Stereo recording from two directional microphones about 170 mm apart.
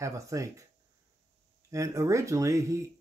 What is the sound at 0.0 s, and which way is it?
Speech, 20° right (ahead or behind).